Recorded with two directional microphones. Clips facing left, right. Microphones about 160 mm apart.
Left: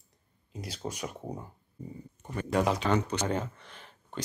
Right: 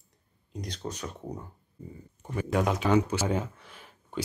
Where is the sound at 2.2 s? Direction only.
5° right (ahead or behind).